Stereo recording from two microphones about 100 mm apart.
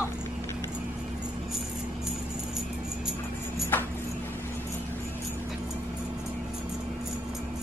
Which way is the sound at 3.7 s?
20° left (ahead or behind).